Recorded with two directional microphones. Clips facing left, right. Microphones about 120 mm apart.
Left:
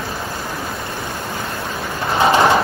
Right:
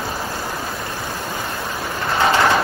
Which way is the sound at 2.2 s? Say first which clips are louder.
Left 3 dB; 20° left (ahead or behind).